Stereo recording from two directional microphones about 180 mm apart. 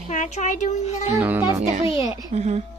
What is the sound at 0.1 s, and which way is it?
A child's voice, 45° left (ahead or behind).